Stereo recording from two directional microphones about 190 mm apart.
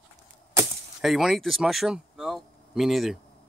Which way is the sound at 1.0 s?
Centre (ahead or behind).